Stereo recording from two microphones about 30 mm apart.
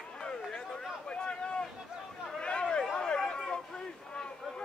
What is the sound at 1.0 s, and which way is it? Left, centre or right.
Boat, left.